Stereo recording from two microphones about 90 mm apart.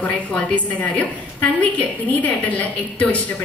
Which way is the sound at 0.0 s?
15° left (ahead or behind).